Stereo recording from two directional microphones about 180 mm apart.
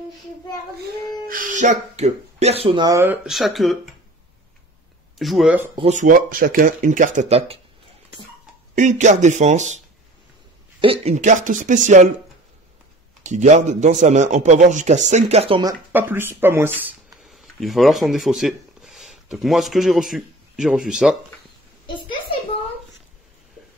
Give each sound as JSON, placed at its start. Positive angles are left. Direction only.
{"t": 1.3, "sound": "speech", "side_deg": -45}
{"t": 3.3, "sound": "speech", "side_deg": 0}
{"t": 5.2, "sound": "speech", "side_deg": 0}
{"t": 5.8, "sound": "speech", "side_deg": -40}
{"t": 8.7, "sound": "speech", "side_deg": -40}
{"t": 10.8, "sound": "speech", "side_deg": -35}
{"t": 13.2, "sound": "speech", "side_deg": -40}
{"t": 15.9, "sound": "speech", "side_deg": -10}
{"t": 17.3, "sound": "speech", "side_deg": 0}